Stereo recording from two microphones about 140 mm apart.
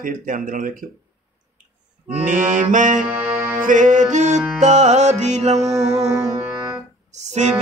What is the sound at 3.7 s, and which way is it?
Music, 65° right (ahead or behind).